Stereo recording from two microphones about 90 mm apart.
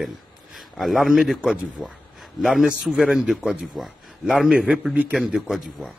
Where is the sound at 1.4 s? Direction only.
10° right (ahead or behind).